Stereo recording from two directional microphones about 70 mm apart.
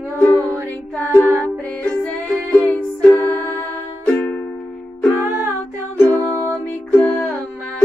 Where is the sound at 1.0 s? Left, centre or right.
Left.